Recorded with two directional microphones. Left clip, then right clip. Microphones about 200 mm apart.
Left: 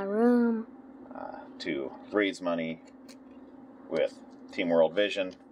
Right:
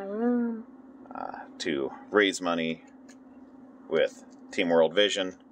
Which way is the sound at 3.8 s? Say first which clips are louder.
Right 3 dB; 50° right (ahead or behind).